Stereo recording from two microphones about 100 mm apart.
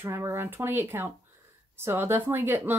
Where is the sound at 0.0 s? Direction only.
25° right (ahead or behind).